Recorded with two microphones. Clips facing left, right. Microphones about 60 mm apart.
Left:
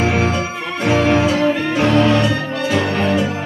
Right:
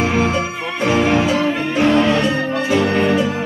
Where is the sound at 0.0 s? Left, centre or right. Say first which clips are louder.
Even; right.